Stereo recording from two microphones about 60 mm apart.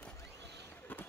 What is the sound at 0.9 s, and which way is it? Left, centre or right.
Run, left.